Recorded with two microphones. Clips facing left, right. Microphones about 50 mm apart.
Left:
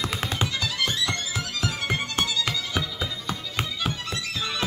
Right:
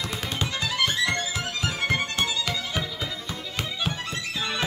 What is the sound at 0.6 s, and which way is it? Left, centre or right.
Music, right.